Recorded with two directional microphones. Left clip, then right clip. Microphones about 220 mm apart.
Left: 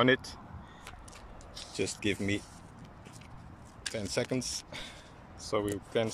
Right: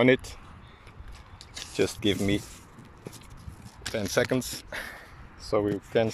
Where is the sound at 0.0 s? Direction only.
15° right (ahead or behind).